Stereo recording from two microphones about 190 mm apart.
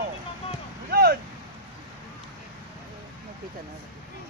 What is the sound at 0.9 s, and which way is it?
Vehicle, 55° right (ahead or behind).